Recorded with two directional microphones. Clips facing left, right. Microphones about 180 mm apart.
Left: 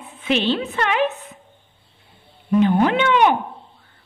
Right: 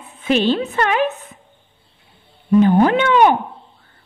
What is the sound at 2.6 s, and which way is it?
Speech, 45° right (ahead or behind).